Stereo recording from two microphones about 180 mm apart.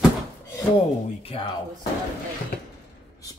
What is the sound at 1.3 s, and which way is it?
Speech, 30° left (ahead or behind).